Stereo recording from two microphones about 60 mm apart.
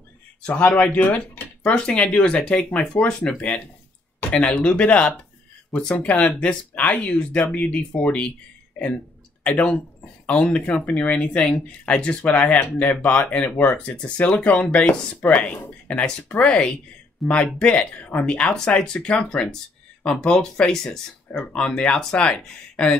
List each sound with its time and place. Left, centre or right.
0.4 s speech: left
9.6 s speech: centre
17.2 s speech: centre
17.6 s speech: centre
21.3 s speech: left